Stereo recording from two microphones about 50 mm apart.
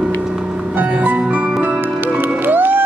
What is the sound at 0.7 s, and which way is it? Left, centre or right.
Music, right.